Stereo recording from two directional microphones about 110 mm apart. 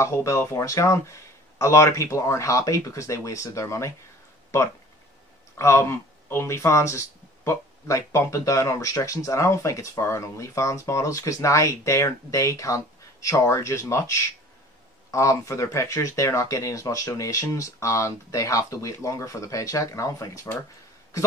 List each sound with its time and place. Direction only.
0.0 s speech: 25° left (ahead or behind)
5.6 s speech: 25° left (ahead or behind)